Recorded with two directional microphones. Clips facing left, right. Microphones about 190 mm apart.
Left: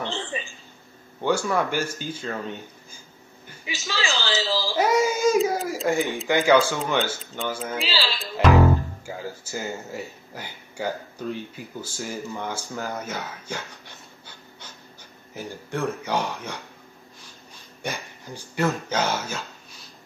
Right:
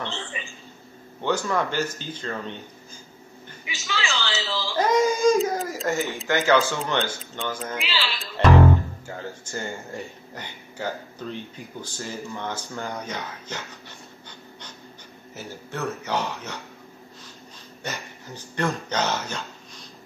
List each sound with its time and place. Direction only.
0.3 s a sound: 35° left (ahead or behind)
1.2 s speech: 10° left (ahead or behind)
3.6 s a woman's voice: 30° left (ahead or behind)
4.7 s baby cry: 10° left (ahead or behind)
5.9 s speech: 15° left (ahead or behind)
7.8 s a woman's voice: 35° left (ahead or behind)
8.2 s speech: 5° left (ahead or behind)
15.3 s speech: 10° left (ahead or behind)
17.8 s speech: 10° left (ahead or behind)